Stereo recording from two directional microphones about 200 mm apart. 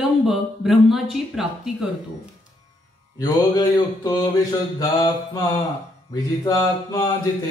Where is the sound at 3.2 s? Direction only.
20° left (ahead or behind).